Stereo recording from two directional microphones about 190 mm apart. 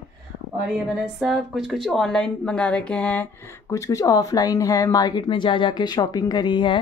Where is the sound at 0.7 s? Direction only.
Centre (ahead or behind); by 6.8 s 25° left (ahead or behind).